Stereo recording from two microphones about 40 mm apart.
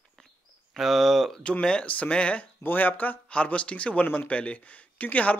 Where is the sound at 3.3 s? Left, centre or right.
Left.